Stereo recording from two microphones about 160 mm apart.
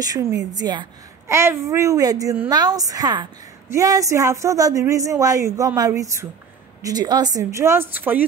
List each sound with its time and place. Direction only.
0.0 s a woman's voice: 25° right (ahead or behind)